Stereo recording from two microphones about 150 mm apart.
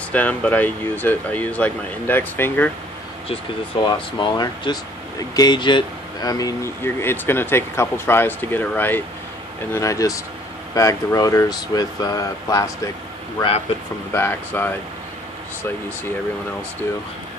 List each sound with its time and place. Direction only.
0.1 s speech: 10° left (ahead or behind)
3.8 s speech: 30° left (ahead or behind)
14.1 s speech: 15° left (ahead or behind)